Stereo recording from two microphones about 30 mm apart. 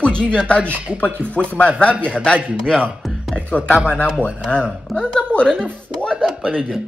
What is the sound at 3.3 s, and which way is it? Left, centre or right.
Speech, left.